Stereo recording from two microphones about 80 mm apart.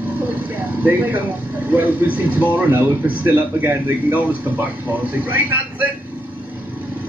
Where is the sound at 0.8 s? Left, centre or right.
Right.